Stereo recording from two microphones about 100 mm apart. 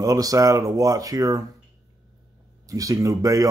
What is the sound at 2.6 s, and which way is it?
Speech, 35° right (ahead or behind).